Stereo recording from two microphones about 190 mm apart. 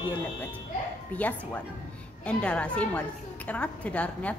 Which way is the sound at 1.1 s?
10° left (ahead or behind).